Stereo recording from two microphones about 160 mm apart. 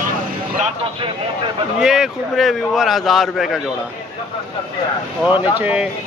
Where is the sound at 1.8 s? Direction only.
5° right (ahead or behind).